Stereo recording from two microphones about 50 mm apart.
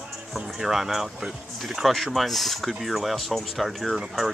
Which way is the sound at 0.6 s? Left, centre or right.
Centre.